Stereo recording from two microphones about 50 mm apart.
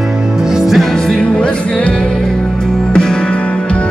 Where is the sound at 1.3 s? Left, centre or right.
Centre.